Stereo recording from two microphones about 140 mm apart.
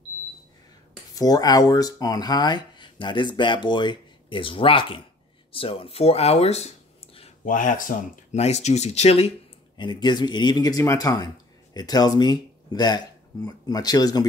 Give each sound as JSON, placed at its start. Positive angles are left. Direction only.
{"t": 1.1, "sound": "speech", "side_deg": 25}
{"t": 7.4, "sound": "speech", "side_deg": 70}
{"t": 8.4, "sound": "speech", "side_deg": 50}
{"t": 9.8, "sound": "speech", "side_deg": 35}